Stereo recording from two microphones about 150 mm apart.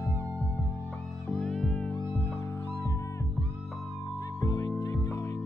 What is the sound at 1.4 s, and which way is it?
Music, 5° left (ahead or behind).